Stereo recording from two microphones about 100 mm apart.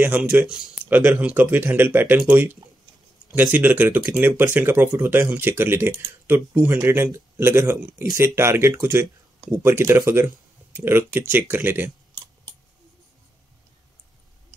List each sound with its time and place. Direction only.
0.0 s speech: 15° right (ahead or behind)